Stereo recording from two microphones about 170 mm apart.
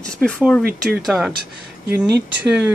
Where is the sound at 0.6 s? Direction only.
60° right (ahead or behind).